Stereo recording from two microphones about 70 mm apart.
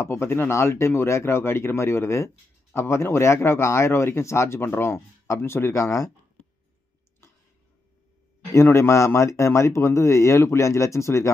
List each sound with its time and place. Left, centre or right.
0.0 s speech: left
5.8 s speech: left
8.5 s speech: left